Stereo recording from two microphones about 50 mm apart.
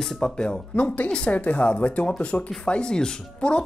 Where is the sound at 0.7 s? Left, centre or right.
Left.